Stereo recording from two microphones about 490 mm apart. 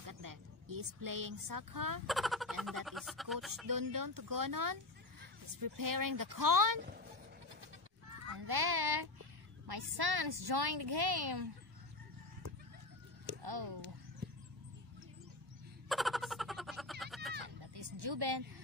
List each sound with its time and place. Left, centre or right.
0.0 s speech: right
2.0 s speech: centre
3.6 s speech: right
8.4 s a woman's voice: right
13.4 s speech: right
15.9 s a sound: centre
17.6 s a sound: right